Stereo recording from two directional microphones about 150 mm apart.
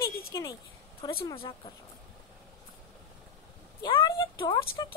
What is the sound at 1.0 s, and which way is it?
Speech, 30° left (ahead or behind).